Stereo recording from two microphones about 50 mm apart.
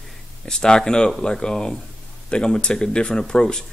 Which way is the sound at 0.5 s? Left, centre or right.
Centre.